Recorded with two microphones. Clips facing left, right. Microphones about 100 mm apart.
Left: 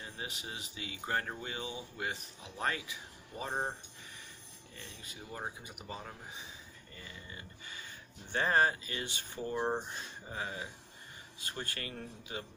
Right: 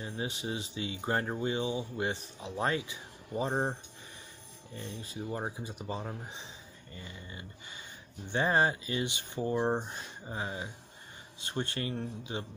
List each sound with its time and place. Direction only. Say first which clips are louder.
0.0 s speech: right 7 dB; 25° right (ahead or behind)
4.7 s speech: right 10 dB; 30° right (ahead or behind)